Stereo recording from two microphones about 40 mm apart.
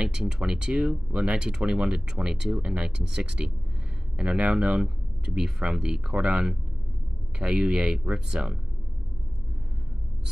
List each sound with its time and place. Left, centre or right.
0.0 s speech: centre
3.0 s speech: centre